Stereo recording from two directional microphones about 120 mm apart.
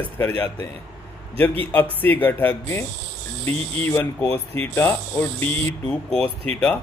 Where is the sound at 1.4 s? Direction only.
15° left (ahead or behind).